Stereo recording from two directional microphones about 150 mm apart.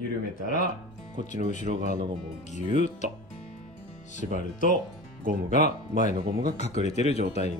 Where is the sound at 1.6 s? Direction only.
60° right (ahead or behind).